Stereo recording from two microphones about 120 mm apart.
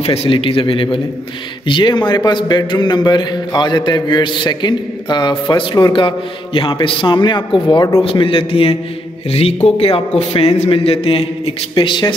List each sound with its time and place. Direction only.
0.0 s a man's voice: 55° left (ahead or behind)
9.8 s a man's voice: 55° left (ahead or behind)